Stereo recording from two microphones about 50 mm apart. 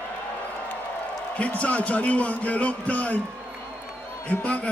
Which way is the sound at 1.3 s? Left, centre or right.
Left.